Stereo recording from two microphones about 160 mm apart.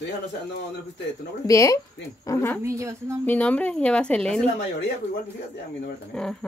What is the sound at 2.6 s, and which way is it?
Speech, 20° right (ahead or behind).